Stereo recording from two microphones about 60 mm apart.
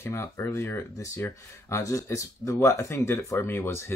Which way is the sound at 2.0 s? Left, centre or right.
Left.